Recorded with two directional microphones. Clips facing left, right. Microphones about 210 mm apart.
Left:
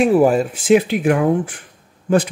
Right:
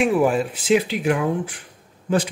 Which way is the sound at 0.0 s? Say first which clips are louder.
Left 5 dB; 40° left (ahead or behind).